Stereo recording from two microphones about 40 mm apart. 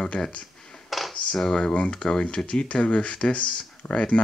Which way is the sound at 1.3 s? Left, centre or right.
Centre.